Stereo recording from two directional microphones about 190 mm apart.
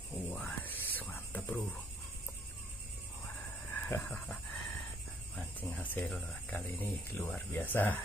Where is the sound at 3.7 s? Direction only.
Centre (ahead or behind).